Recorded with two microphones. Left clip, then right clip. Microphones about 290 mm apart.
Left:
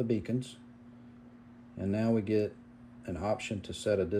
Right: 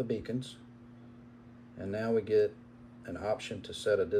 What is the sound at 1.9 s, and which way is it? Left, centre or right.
Speech, centre.